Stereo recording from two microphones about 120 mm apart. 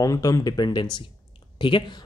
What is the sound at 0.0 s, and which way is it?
Speech, 30° left (ahead or behind).